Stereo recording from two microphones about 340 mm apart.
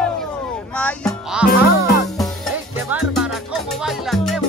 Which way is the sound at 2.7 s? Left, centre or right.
Centre.